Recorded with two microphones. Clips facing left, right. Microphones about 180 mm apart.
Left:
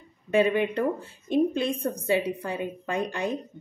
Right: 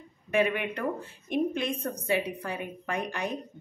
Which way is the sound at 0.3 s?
30° left (ahead or behind).